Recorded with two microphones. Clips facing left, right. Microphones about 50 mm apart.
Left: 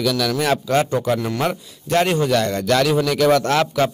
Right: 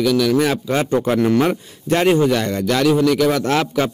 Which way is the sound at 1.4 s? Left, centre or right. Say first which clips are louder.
Right 5 dB; centre.